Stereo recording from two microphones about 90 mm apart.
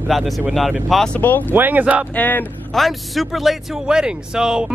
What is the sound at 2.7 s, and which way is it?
Speech, centre (ahead or behind).